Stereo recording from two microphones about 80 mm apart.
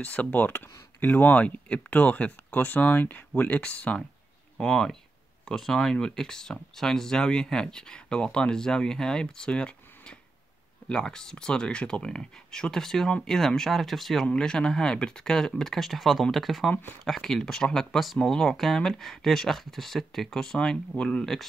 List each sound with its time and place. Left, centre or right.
0.0 s speech: centre